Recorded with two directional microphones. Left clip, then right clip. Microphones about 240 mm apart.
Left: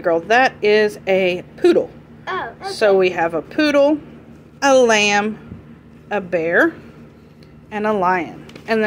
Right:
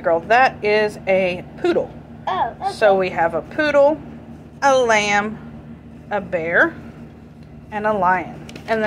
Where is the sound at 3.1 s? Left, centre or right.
Left.